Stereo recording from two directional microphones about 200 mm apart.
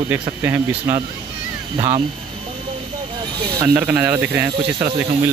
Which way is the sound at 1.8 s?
25° right (ahead or behind).